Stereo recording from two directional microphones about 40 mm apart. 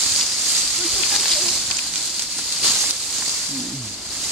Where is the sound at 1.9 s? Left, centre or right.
Centre.